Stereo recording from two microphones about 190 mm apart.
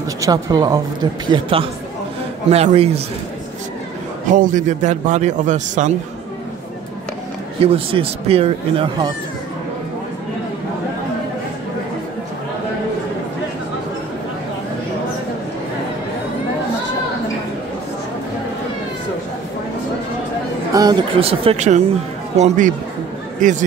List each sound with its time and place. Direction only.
0.2 s a man's voice: 20° right (ahead or behind)
4.3 s a man's voice: 45° right (ahead or behind)
7.6 s speech: 30° right (ahead or behind)
20.7 s a man's voice: 20° right (ahead or behind)